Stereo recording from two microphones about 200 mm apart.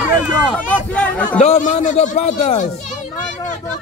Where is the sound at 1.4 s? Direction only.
35° left (ahead or behind).